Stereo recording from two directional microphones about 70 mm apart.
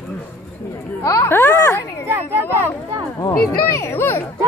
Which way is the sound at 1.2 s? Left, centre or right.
Left.